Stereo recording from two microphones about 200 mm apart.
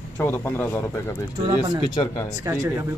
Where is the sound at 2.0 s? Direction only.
25° left (ahead or behind).